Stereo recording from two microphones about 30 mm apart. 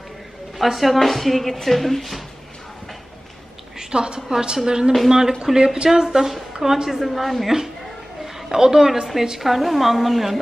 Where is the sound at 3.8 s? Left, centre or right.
Right.